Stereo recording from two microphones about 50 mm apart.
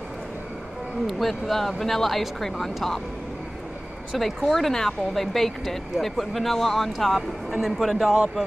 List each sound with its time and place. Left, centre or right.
1.0 s speech: centre
4.2 s speech: centre